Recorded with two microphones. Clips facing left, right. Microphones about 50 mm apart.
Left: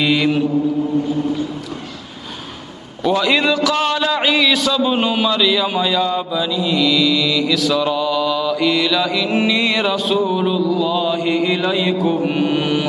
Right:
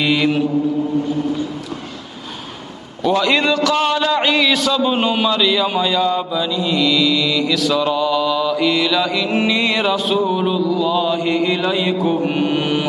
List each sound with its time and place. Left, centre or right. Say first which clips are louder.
0.0 s a man's voice: even; centre
3.0 s a man's voice: even; centre